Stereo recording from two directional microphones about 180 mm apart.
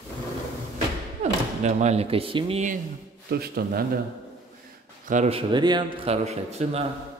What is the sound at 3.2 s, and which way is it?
Speech, 60° right (ahead or behind).